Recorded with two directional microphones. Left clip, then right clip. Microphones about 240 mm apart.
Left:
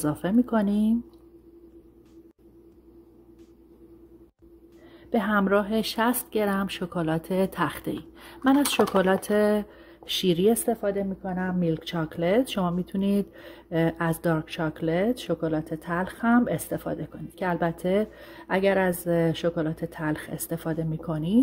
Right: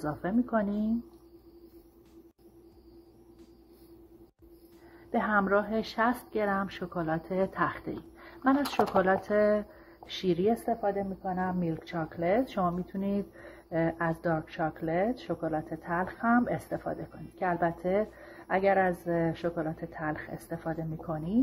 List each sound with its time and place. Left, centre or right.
0.0 s speech: left
5.1 s speech: left